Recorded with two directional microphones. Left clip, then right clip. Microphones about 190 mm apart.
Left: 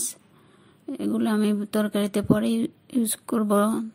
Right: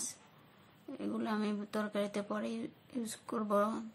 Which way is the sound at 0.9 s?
40° left (ahead or behind).